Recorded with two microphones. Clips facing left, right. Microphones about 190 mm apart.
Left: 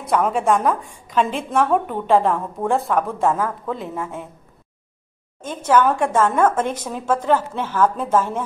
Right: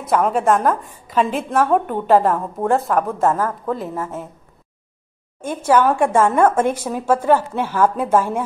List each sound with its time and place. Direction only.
0.0 s a woman's voice: centre (ahead or behind)
5.4 s a woman's voice: 10° right (ahead or behind)